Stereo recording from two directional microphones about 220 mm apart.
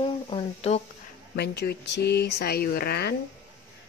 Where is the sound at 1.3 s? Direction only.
50° left (ahead or behind).